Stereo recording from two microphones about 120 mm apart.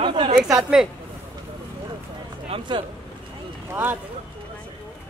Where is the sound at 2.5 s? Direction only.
55° right (ahead or behind).